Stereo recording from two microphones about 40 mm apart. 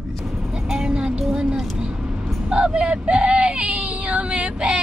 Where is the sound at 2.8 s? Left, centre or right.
Right.